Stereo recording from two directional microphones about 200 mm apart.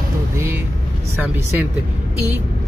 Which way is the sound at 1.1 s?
10° right (ahead or behind).